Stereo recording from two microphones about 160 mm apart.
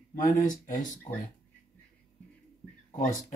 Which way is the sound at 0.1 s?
55° left (ahead or behind).